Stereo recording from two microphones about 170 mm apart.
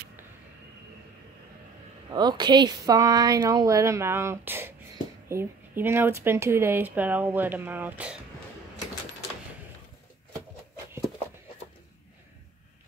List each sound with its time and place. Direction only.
2.0 s a woman's voice: 25° right (ahead or behind); by 8.2 s 10° right (ahead or behind)